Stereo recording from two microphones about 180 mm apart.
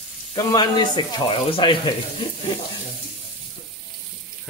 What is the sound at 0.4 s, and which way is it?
Speech, 20° left (ahead or behind).